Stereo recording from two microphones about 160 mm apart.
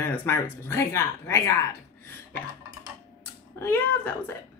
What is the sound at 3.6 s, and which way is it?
Speech, 10° left (ahead or behind).